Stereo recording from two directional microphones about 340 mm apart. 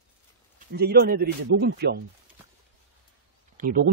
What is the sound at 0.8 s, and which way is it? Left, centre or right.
Speech, right.